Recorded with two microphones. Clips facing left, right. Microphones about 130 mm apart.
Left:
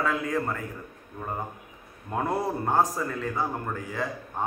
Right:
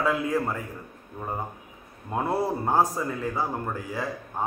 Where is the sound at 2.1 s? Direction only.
10° right (ahead or behind).